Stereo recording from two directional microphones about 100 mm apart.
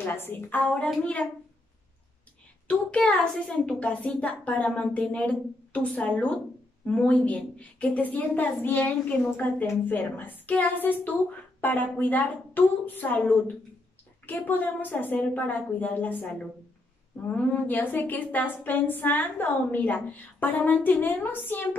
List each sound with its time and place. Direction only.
0.1 s a woman's voice: 20° left (ahead or behind)
2.7 s a woman's voice: 15° left (ahead or behind)
14.2 s a woman's voice: 20° left (ahead or behind)
17.3 s a woman's voice: 15° left (ahead or behind)